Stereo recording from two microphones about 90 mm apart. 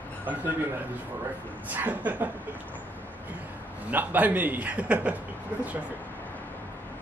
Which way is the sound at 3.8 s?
20° right (ahead or behind).